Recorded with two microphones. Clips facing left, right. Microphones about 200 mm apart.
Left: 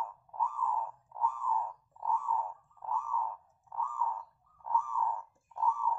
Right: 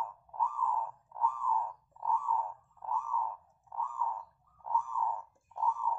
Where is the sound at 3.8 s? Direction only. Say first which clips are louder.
Left 1 dB; 15° right (ahead or behind).